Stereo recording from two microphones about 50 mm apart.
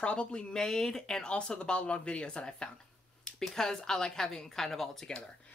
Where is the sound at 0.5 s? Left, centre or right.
Centre.